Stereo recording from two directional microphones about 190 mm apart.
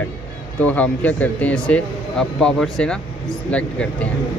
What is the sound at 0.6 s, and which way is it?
Speech, 10° left (ahead or behind).